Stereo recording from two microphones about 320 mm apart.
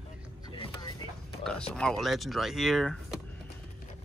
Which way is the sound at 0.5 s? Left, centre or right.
Centre.